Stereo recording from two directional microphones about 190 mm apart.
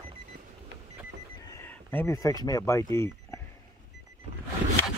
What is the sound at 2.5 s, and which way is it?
Speech, 15° left (ahead or behind).